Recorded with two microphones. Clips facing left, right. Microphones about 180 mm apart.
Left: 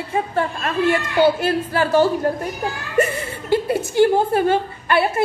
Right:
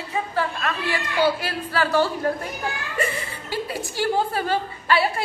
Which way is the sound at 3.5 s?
55° left (ahead or behind).